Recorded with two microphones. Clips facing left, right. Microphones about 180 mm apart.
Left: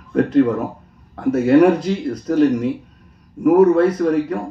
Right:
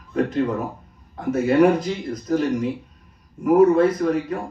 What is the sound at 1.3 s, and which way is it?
A man's voice, 70° left (ahead or behind).